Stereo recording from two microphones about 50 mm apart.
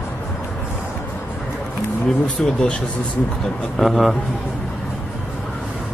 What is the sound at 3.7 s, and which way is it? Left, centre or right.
Speech, centre.